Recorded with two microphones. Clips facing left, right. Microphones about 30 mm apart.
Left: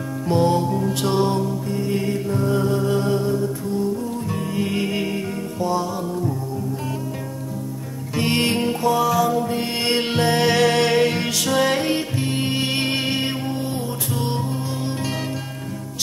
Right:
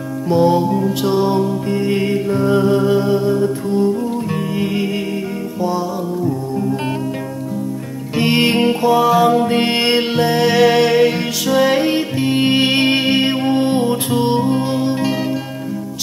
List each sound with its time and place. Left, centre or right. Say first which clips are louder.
0.3 s music: right 5 dB; centre
1.0 s music: right 3 dB; centre
1.7 s music: right 6 dB; right
3.0 s music: right 5 dB; centre
3.3 s music: right 7 dB; right
8.2 s music: right 6 dB; right
9.2 s music: right 7 dB; right
10.1 s music: right 1 dB; centre; by 13.4 s right
13.5 s music: right 11 dB; right
14.1 s music: right 9 dB; right
14.8 s music: right 8 dB; right